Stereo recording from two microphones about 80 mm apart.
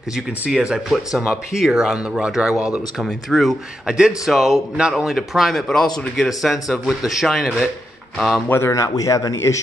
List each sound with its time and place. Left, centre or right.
0.1 s speech: centre
3.0 s speech: centre
3.8 s speech: centre
8.5 s speech: left
8.7 s speech: left